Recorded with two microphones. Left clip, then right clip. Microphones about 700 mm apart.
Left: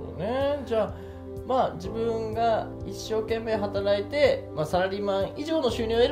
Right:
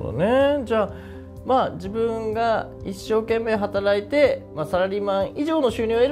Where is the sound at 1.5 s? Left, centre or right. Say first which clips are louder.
Right 5 dB; right.